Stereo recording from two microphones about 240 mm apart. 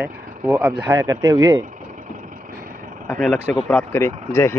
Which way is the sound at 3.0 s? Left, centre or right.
Centre.